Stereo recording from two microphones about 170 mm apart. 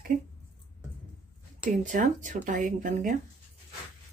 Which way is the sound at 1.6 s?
50° right (ahead or behind).